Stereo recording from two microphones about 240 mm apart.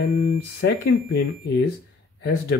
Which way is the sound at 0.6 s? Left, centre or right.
Left.